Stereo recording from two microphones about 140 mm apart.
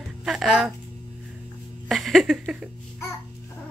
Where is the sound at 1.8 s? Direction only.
Centre (ahead or behind).